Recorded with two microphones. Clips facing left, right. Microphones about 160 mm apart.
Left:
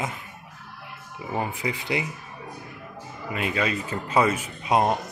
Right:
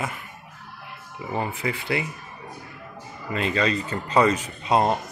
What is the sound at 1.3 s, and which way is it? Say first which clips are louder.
Speech: right 1 dB; 15° left (ahead or behind).